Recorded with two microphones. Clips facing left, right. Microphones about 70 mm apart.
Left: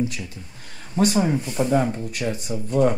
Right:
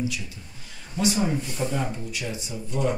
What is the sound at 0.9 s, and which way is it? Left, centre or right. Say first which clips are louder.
Speech: left 4 dB; left.